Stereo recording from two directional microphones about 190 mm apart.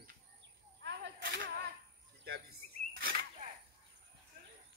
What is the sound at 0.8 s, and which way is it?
Speech, 60° right (ahead or behind).